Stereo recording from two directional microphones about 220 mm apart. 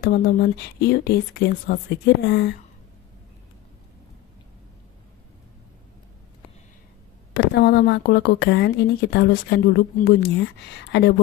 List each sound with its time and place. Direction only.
0.0 s speech: 45° left (ahead or behind)
7.3 s speech: 50° left (ahead or behind)